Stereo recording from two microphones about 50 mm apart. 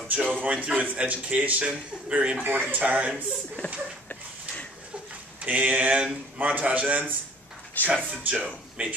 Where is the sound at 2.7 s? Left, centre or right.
Right.